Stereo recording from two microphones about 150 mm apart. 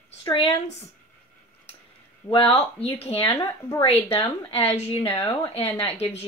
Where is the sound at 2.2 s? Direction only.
40° left (ahead or behind).